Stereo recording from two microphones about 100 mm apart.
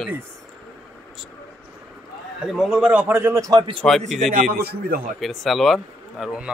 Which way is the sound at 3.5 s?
55° right (ahead or behind).